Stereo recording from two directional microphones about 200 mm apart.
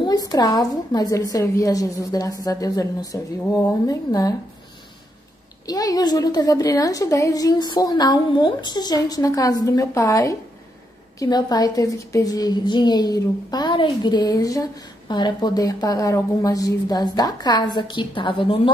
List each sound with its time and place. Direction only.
0.3 s a woman's voice: 20° left (ahead or behind)
5.7 s a woman's voice: 20° left (ahead or behind)